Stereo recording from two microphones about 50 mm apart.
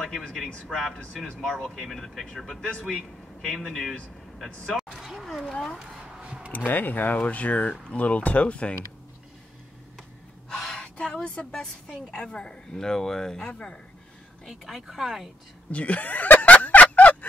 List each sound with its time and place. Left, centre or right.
0.3 s a woman's voice: centre
4.6 s vehicle: centre
5.2 s a sound: centre
6.2 s a sound: right
6.5 s speech: left
10.5 s a woman's voice: centre
14.4 s speech: centre
15.7 s snicker: left